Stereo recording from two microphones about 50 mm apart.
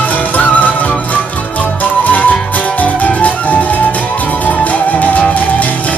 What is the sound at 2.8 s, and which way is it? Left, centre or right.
Music, left.